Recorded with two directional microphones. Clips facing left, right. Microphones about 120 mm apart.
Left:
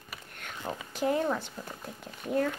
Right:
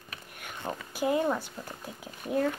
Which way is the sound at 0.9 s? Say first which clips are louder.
Right 1 dB; 5° right (ahead or behind).